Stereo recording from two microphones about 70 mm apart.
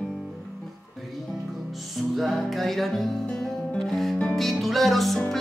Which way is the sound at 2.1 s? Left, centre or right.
Centre.